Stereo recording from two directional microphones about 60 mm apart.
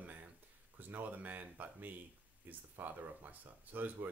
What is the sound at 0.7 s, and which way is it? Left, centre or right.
Speech, right.